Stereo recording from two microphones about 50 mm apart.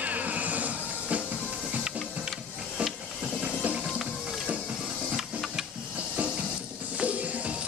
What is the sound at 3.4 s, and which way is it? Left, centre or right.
Music, right.